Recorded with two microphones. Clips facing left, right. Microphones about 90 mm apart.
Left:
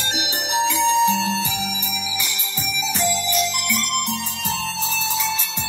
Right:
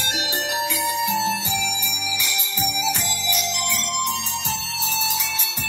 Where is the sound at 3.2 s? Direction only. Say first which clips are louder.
Left 3 dB; 40° left (ahead or behind).